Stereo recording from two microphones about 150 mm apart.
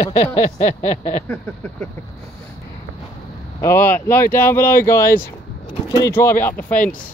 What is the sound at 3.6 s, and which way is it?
Speech, 15° left (ahead or behind).